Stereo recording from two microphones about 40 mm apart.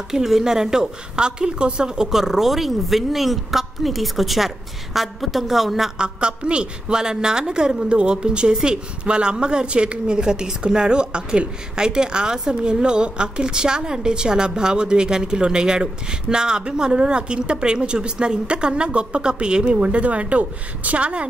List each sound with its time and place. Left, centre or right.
0.1 s a woman's voice: centre
5.9 s a woman's voice: right